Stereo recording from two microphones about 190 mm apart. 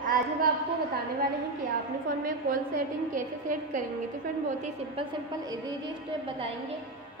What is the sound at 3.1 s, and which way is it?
A woman's voice, 45° right (ahead or behind).